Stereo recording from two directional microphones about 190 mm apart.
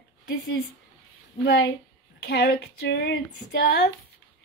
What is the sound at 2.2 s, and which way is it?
Female singing, 55° left (ahead or behind).